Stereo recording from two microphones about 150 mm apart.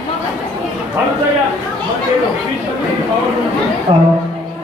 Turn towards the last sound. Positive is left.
turn(degrees=-40)  # may be behind; listen again after turning